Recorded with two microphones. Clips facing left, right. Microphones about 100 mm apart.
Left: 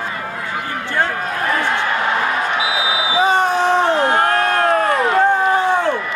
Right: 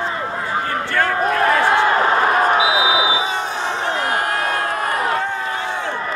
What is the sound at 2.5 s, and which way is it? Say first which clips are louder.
Basketball bounce: right 3 dB; 30° right (ahead or behind).